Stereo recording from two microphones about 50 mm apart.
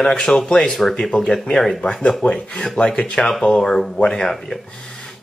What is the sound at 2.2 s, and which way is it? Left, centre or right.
Speech, centre.